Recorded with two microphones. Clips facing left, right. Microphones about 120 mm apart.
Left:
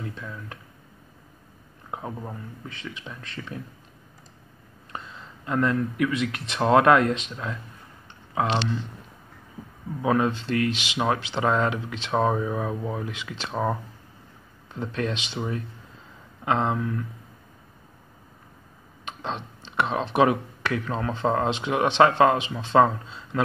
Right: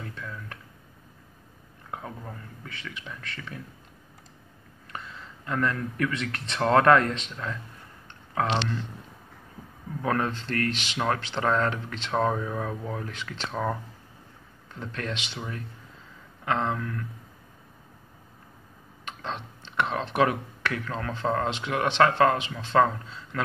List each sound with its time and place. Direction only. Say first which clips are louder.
0.1 s speech: left 1 dB; 15° left (ahead or behind)
1.9 s speech: left 4 dB; 20° left (ahead or behind)
4.9 s speech: left 1 dB; 20° left (ahead or behind)
10.0 s speech: left 4 dB; 10° left (ahead or behind)
19.0 s speech: left 3 dB; 20° left (ahead or behind)